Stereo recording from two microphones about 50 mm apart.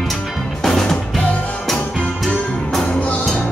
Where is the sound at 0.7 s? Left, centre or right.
Centre.